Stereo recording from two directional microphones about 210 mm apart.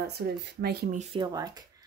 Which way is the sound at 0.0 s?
50° right (ahead or behind).